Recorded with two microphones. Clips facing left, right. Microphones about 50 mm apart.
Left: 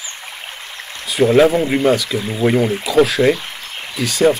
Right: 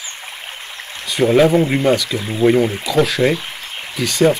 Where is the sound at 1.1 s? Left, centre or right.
Centre.